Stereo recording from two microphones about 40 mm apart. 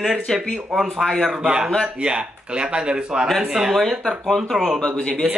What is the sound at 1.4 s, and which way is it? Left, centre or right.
Speech, right.